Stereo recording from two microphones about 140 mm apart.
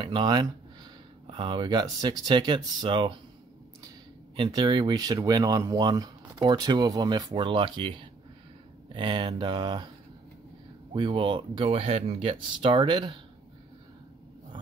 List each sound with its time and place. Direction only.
0.0 s speech: 30° right (ahead or behind)
4.4 s speech: 30° right (ahead or behind)
10.9 s speech: 35° right (ahead or behind)